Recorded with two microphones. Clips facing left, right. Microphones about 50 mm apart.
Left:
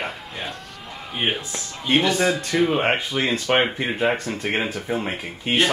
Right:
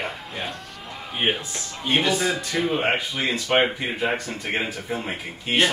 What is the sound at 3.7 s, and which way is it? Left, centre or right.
Speech, left.